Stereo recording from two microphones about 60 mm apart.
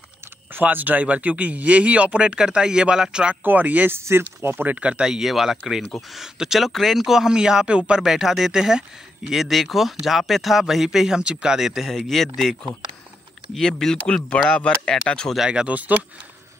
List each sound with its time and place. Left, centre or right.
0.5 s a man's voice: right; by 3.3 s centre
3.4 s a man's voice: right
4.0 s speech: right
4.6 s a man's voice: right
5.0 s speech: centre
12.1 s speech: centre
13.6 s speech: centre
15.3 s speech: centre